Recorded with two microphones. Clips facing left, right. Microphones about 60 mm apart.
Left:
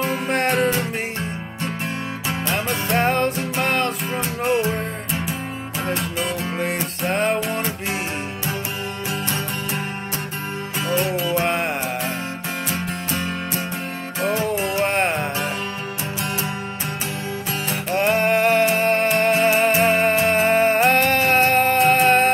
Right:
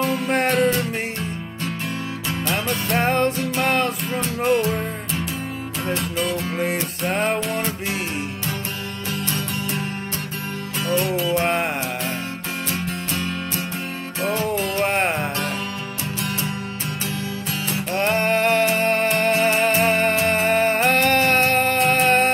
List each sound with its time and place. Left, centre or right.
0.3 s music: centre
0.6 s music: left
2.5 s music: centre
6.5 s music: centre
11.1 s music: centre
12.7 s music: left
14.3 s music: centre
17.9 s music: centre